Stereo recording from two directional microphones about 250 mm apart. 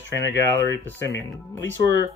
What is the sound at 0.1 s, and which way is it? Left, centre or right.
Speech, left.